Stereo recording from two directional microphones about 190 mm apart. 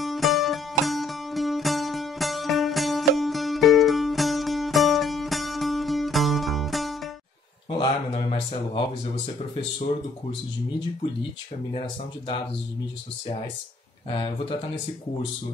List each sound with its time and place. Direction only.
0.0 s music: centre (ahead or behind)
7.7 s speech: 25° left (ahead or behind)
14.1 s speech: 25° left (ahead or behind)